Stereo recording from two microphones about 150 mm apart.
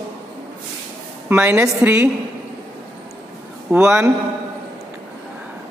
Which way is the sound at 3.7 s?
15° right (ahead or behind).